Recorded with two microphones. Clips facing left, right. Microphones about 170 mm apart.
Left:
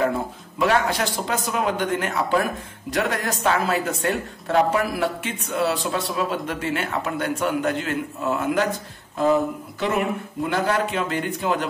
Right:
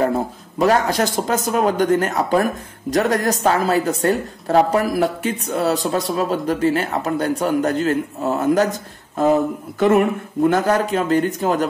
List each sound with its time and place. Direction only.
0.0 s speech: 40° right (ahead or behind)
9.8 s speech: 50° right (ahead or behind)